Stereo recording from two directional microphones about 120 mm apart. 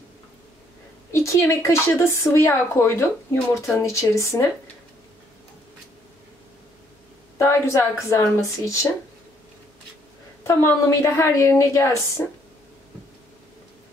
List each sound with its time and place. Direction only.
1.1 s speech: 25° left (ahead or behind)
7.3 s speech: 20° left (ahead or behind)
10.4 s speech: 25° left (ahead or behind)